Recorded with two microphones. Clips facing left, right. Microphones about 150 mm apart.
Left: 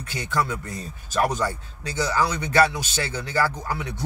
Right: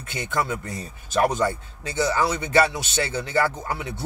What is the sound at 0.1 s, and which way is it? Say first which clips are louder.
A man's voice: even; 20° right (ahead or behind).